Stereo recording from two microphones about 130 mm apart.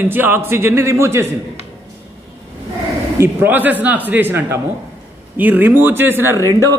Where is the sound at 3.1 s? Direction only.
15° right (ahead or behind).